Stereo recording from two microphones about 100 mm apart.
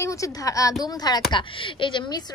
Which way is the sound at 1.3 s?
55° left (ahead or behind).